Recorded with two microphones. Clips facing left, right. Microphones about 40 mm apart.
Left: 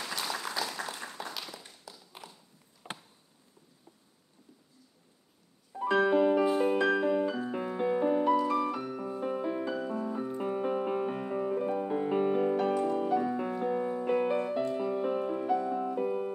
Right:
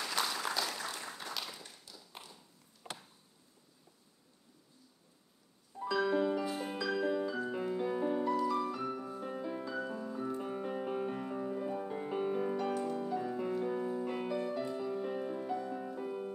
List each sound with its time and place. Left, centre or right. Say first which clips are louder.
0.0 s applause: even; centre
0.8 s a sound: left 2 dB; centre
1.3 s a sound: even; centre
2.8 s a sound: left 4 dB; centre
5.7 s music: left 6 dB; left
8.3 s piano: left 6 dB; left
8.8 s music: left 5 dB; left
11.9 s piano: left 8 dB; left
13.4 s music: left 4 dB; left
14.2 s music: left 6 dB; left
14.7 s music: left 6 dB; left